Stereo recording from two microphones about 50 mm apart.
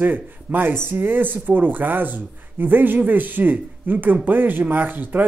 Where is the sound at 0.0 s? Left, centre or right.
Right.